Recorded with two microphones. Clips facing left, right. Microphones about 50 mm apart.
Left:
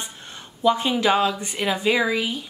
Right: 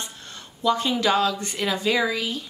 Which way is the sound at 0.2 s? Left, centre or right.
Centre.